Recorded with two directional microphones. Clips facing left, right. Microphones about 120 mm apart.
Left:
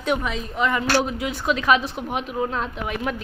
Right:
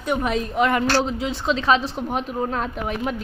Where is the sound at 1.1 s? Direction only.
25° right (ahead or behind).